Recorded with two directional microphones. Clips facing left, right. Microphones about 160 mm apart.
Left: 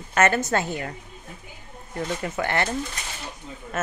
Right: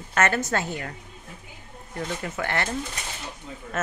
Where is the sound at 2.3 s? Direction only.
20° left (ahead or behind).